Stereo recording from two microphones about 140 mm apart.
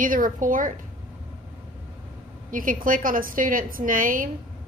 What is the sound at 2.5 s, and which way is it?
A woman's voice, 75° right (ahead or behind).